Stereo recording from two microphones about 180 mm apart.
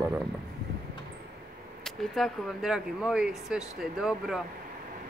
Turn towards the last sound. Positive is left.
turn(degrees=0)  # may be behind; listen again after turning